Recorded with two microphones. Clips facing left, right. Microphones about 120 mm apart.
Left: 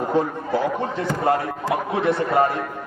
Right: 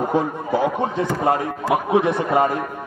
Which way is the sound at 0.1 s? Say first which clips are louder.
Right 1 dB; 15° right (ahead or behind).